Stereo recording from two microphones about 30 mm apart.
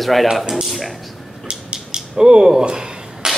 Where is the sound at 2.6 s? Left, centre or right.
Right.